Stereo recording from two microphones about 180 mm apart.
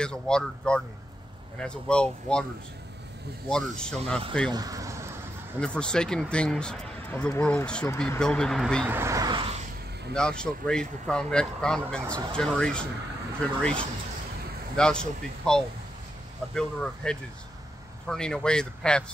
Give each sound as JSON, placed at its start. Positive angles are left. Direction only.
{"t": 0.0, "sound": "a man's voice", "side_deg": 5}
{"t": 3.4, "sound": "a man's voice", "side_deg": 5}
{"t": 4.5, "sound": "a sound", "side_deg": -20}
{"t": 5.6, "sound": "a man's voice", "side_deg": 5}
{"t": 8.8, "sound": "a sound", "side_deg": -15}
{"t": 10.1, "sound": "a man's voice", "side_deg": 5}